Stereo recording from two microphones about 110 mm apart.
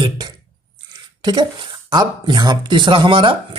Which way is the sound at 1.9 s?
40° right (ahead or behind).